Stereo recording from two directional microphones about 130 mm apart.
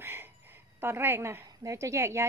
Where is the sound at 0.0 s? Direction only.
15° right (ahead or behind).